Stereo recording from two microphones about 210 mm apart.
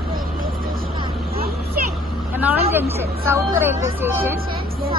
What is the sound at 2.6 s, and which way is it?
Speech, 10° right (ahead or behind).